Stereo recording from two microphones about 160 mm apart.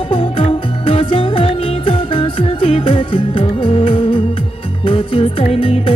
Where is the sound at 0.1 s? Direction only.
35° left (ahead or behind).